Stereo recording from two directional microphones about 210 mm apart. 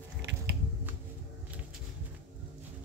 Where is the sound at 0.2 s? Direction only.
55° right (ahead or behind).